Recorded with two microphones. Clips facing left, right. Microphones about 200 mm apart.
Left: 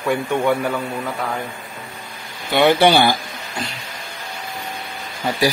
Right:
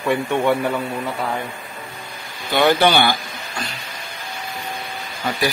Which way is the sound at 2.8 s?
30° left (ahead or behind).